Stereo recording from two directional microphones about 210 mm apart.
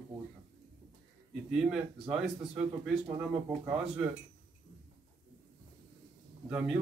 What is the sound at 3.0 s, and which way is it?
Speech, 20° right (ahead or behind).